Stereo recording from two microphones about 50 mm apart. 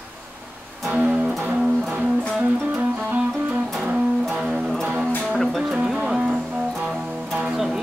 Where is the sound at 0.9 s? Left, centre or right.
Right.